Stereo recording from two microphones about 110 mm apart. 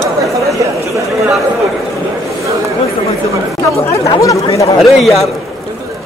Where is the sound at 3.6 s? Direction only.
25° left (ahead or behind).